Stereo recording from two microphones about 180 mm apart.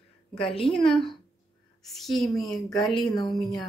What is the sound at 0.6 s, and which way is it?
Speech, 30° left (ahead or behind).